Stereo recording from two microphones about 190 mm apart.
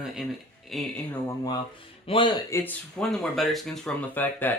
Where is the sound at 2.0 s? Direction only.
25° left (ahead or behind).